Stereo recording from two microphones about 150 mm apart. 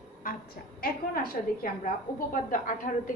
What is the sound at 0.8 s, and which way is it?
A woman's voice, 75° left (ahead or behind).